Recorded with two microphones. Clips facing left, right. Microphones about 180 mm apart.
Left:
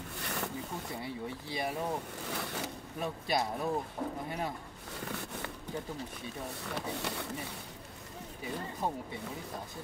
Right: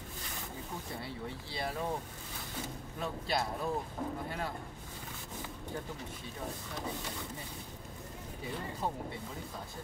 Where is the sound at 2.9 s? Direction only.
15° left (ahead or behind).